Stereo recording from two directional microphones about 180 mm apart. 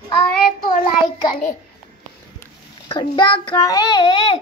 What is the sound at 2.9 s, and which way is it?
A child's voice, 25° left (ahead or behind).